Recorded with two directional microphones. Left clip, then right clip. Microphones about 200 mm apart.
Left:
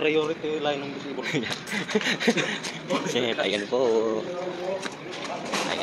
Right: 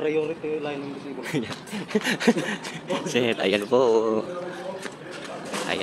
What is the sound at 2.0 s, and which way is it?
A man's voice, 45° right (ahead or behind).